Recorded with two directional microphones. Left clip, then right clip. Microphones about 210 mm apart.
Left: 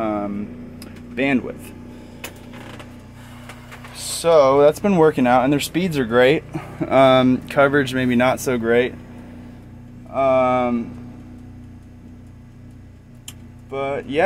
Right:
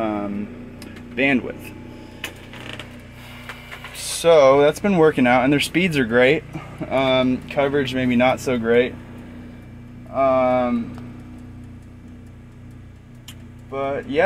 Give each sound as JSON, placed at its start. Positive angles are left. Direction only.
{"t": 0.0, "sound": "vehicle", "side_deg": 5}
{"t": 0.7, "sound": "a sound", "side_deg": 5}
{"t": 4.2, "sound": "speech", "side_deg": 0}
{"t": 6.5, "sound": "speech", "side_deg": 25}
{"t": 10.1, "sound": "speech", "side_deg": 15}
{"t": 13.7, "sound": "speech", "side_deg": 15}